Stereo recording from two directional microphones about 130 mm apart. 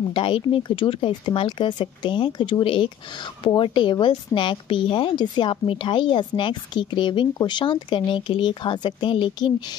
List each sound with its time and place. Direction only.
0.1 s a woman's voice: 40° left (ahead or behind)